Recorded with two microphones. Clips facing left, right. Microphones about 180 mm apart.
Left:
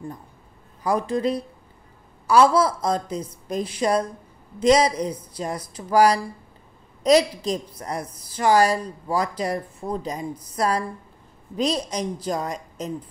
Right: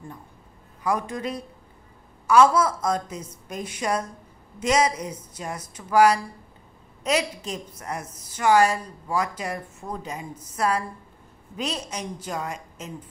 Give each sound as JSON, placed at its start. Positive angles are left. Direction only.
{"t": 0.8, "sound": "a woman's voice", "side_deg": 30}